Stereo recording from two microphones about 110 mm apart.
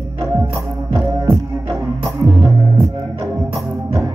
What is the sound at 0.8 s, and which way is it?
Music, 25° right (ahead or behind).